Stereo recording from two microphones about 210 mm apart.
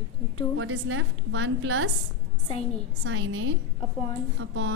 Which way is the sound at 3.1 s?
70° right (ahead or behind).